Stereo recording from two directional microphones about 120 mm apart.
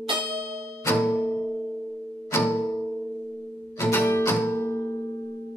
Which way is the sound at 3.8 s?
20° left (ahead or behind).